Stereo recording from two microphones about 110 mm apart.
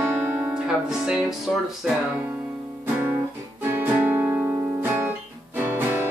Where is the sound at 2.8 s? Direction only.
20° right (ahead or behind).